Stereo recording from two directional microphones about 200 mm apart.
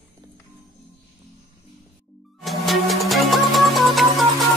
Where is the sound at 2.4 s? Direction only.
Centre (ahead or behind).